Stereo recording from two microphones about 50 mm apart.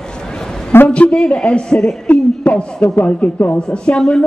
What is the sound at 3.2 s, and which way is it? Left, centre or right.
Speech, centre.